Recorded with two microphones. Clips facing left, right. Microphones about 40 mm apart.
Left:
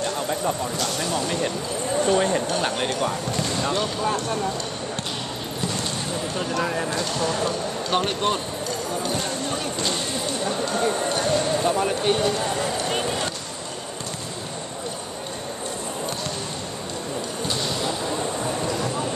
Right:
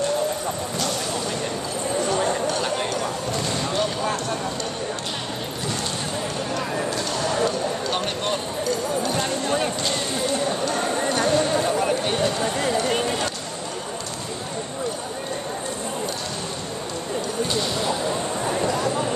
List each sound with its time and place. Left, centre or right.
2.0 s a sound: left
3.7 s speech: centre
7.9 s speech: centre
9.1 s speech: centre
11.6 s speech: centre